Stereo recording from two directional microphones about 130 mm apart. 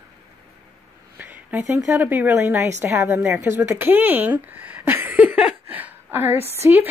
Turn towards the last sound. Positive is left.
turn(degrees=-20)  # may be behind; listen again after turning